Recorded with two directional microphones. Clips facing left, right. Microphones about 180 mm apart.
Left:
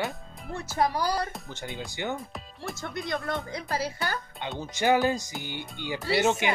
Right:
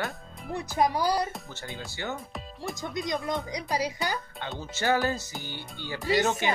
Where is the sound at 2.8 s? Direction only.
15° right (ahead or behind).